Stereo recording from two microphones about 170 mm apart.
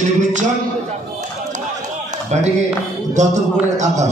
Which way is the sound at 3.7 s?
45° right (ahead or behind).